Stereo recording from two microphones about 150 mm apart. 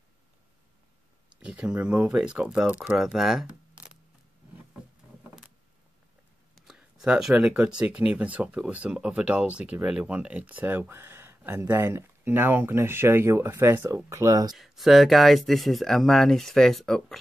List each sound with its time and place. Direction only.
1.4 s speech: 5° right (ahead or behind)
6.5 s speech: centre (ahead or behind); by 14.5 s 20° right (ahead or behind)
14.5 s speech: centre (ahead or behind)